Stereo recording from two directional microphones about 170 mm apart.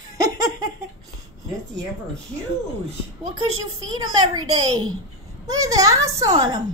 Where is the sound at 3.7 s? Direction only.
25° right (ahead or behind).